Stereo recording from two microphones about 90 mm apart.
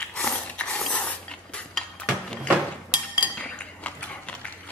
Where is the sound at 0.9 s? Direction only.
10° left (ahead or behind).